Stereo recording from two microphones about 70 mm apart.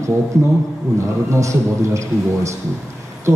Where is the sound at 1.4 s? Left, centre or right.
Right.